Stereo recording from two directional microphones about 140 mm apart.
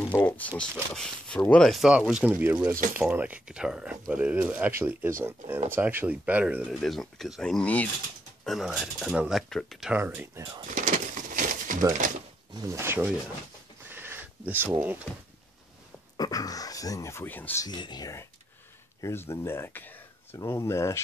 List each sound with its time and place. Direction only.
0.0 s speech: 15° left (ahead or behind)
8.5 s speech: centre (ahead or behind)
9.9 s speech: 15° right (ahead or behind)
10.7 s a sound: 65° right (ahead or behind)
12.6 s speech: 20° right (ahead or behind)
13.8 s a sound: 15° right (ahead or behind)
16.2 s speech: 25° left (ahead or behind)
17.6 s speech: 30° left (ahead or behind)